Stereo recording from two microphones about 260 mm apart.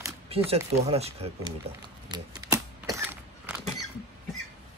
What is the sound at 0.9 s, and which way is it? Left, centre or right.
Speech, right.